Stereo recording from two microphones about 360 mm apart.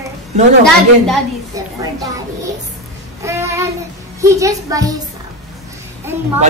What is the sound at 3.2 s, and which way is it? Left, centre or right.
Child singing, centre.